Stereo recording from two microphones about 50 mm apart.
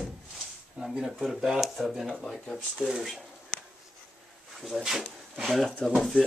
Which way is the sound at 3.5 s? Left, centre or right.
Centre.